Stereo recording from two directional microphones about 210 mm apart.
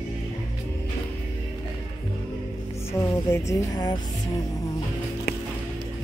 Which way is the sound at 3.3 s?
15° left (ahead or behind).